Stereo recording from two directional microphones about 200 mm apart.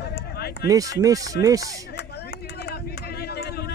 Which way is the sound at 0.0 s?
55° left (ahead or behind).